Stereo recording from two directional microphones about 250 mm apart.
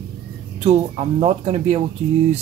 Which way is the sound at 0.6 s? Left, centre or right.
Right.